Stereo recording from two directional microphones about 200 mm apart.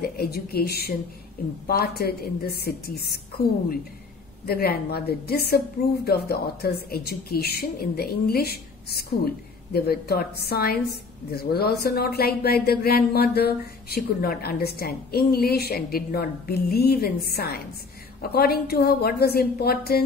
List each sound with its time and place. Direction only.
0.0 s speech: 50° left (ahead or behind)